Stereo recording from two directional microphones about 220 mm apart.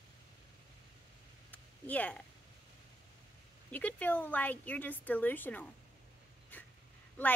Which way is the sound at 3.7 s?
10° left (ahead or behind).